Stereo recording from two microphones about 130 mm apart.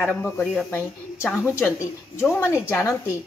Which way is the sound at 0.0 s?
10° left (ahead or behind).